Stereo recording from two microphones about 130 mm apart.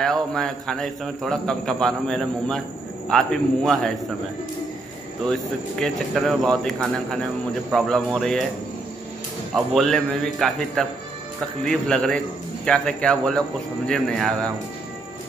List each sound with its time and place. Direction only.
0.0 s a man's voice: 5° left (ahead or behind)
5.2 s a man's voice: 5° left (ahead or behind)
9.5 s a man's voice: centre (ahead or behind)